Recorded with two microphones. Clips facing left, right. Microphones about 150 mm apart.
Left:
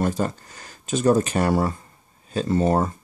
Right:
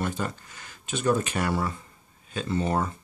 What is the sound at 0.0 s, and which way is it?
Speech, 40° left (ahead or behind).